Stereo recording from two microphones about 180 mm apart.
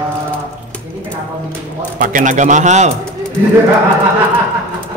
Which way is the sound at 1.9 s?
45° right (ahead or behind).